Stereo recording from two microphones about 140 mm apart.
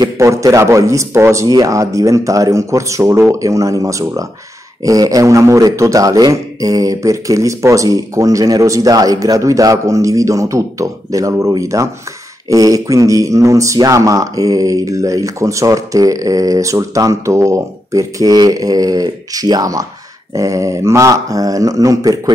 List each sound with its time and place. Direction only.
0.0 s speech: 25° right (ahead or behind)